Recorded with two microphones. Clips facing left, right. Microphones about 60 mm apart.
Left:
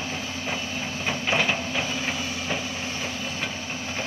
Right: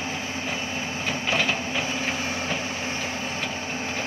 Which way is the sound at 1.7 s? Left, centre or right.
Centre.